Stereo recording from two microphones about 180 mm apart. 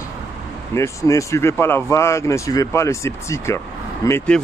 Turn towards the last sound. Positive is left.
turn(degrees=15)  # may be behind; listen again after turning